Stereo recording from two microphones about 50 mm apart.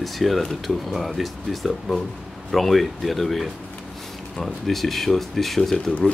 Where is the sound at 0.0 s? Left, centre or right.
Centre.